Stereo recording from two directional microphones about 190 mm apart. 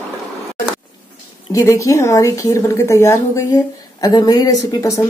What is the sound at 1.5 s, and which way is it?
A woman's voice, 15° left (ahead or behind).